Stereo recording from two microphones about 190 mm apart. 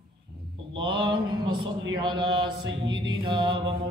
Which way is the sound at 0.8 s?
25° right (ahead or behind).